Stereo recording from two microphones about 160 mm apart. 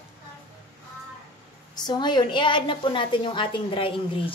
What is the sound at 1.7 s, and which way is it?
A woman's voice, 25° left (ahead or behind).